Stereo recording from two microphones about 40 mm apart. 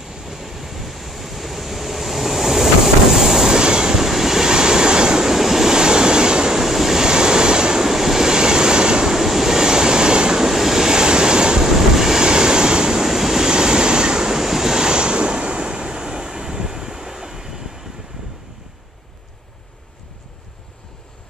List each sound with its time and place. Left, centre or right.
0.2 s waves: centre
3.4 s train: right
5.8 s train: centre
6.6 s vehicle: centre
7.9 s vehicle: centre
10.4 s train: centre
11.6 s vehicle: centre